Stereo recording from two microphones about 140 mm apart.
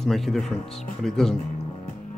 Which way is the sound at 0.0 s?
Centre (ahead or behind).